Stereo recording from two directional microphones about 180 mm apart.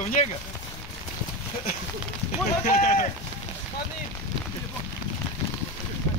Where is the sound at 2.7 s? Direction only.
45° left (ahead or behind).